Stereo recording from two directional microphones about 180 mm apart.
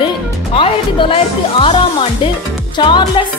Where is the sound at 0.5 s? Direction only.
30° left (ahead or behind).